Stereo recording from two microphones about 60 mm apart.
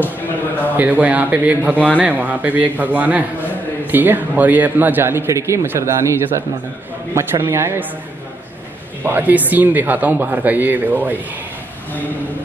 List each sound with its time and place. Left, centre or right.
0.7 s a man's voice: right
9.0 s speech: right